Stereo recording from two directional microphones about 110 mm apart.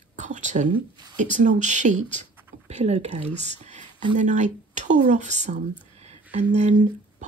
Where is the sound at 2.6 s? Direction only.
80° right.